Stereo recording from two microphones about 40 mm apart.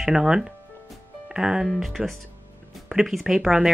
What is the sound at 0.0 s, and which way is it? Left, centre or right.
Speech, centre.